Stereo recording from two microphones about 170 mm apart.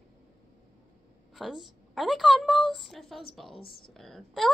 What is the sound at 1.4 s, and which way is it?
Speech, centre (ahead or behind).